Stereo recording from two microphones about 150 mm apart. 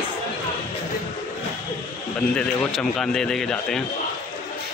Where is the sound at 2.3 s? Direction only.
5° left (ahead or behind).